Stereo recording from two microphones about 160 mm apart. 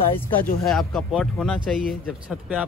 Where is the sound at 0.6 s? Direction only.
Centre (ahead or behind).